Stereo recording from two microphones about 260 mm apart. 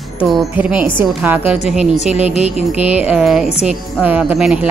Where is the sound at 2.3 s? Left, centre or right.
Left.